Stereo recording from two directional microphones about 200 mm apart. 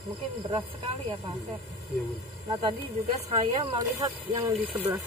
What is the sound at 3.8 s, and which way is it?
Speech, 20° right (ahead or behind).